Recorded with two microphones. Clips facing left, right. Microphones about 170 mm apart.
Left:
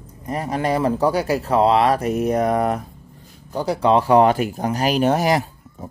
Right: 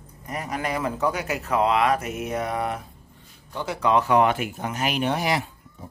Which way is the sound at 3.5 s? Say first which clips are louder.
Left 5 dB; 35° left (ahead or behind).